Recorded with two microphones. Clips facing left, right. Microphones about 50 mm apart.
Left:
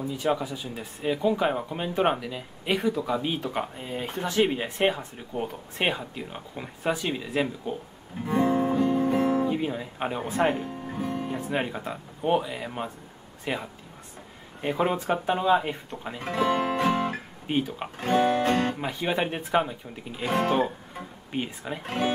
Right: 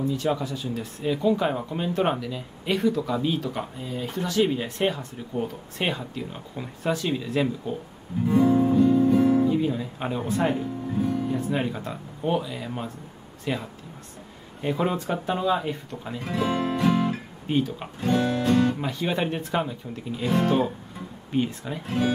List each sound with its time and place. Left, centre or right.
0.0 s speech: centre
8.3 s guitar: left
9.4 s speech: left
10.5 s music: left
11.5 s speech: centre
12.3 s speech: left
16.2 s music: left
17.5 s speech: centre
18.0 s music: left
18.8 s speech: centre
21.8 s speech: left